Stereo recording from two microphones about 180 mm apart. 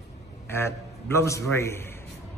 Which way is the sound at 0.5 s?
15° left (ahead or behind).